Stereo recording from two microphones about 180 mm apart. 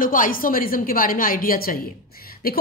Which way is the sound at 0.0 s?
50° left (ahead or behind).